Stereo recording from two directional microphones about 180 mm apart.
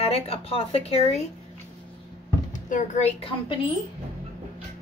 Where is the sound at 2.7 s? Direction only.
40° left (ahead or behind).